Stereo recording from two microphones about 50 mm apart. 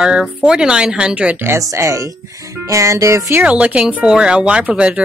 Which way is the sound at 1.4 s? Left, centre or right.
Right.